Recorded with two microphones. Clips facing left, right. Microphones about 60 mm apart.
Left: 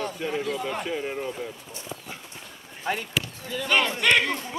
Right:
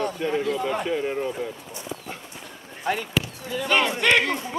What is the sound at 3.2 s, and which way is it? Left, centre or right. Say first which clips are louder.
Speech: right 3 dB; centre.